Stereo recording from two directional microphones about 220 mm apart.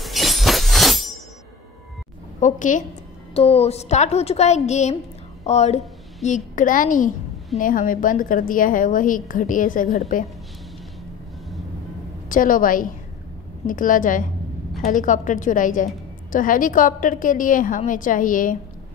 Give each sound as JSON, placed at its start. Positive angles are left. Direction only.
{"t": 0.0, "sound": "shatter", "side_deg": 0}
{"t": 2.4, "sound": "a woman's voice", "side_deg": 35}
{"t": 12.3, "sound": "a woman's voice", "side_deg": 40}